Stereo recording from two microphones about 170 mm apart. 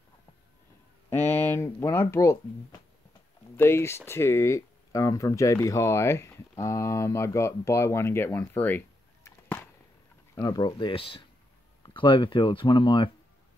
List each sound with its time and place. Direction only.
1.1 s speech: 10° left (ahead or behind)
3.5 s speech: 15° left (ahead or behind)
10.3 s speech: 20° left (ahead or behind)